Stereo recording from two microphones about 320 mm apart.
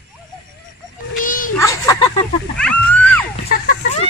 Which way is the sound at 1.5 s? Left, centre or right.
Centre.